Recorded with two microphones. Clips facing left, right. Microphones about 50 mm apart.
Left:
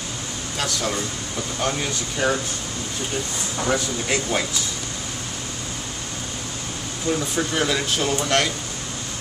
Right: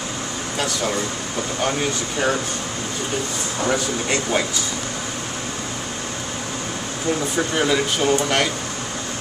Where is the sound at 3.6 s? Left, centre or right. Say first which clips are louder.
Right 2 dB; centre.